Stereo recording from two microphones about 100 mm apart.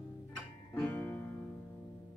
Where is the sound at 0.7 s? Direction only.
15° left (ahead or behind).